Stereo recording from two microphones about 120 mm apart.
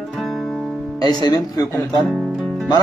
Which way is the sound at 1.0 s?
35° left (ahead or behind).